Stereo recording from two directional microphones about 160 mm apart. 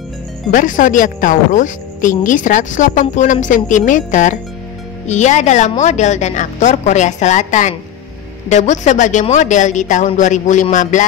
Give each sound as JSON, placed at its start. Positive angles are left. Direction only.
{"t": 0.5, "sound": "speech", "side_deg": 55}